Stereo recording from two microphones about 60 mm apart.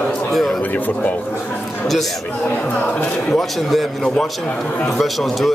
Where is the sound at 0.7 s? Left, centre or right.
Left.